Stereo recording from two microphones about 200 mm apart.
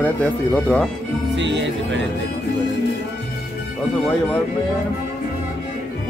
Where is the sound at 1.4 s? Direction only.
65° right (ahead or behind).